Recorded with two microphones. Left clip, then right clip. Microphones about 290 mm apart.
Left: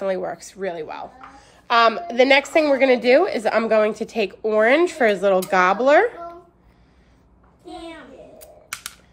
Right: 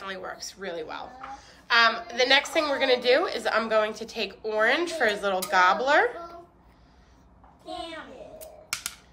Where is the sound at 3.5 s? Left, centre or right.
Centre.